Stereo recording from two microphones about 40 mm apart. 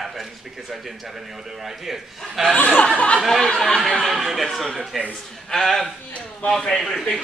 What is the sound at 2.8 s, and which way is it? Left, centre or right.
Speech, left.